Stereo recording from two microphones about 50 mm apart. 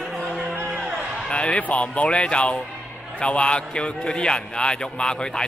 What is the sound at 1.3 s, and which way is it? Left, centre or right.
Music, centre.